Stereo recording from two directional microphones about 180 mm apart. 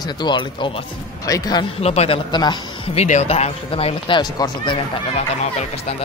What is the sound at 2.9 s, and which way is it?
Speech, 40° left (ahead or behind).